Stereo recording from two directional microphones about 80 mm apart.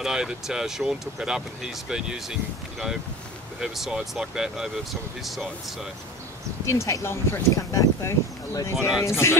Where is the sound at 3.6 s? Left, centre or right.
Centre.